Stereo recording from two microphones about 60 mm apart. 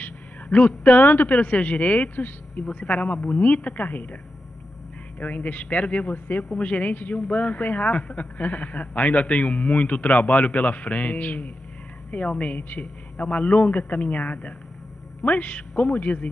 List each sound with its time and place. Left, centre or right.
0.0 s a man's voice: left
5.2 s a man's voice: left